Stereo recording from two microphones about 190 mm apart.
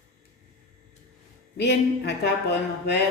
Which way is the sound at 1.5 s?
60° left (ahead or behind).